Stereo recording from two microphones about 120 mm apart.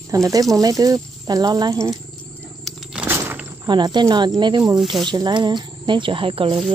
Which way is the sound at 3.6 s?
40° right (ahead or behind).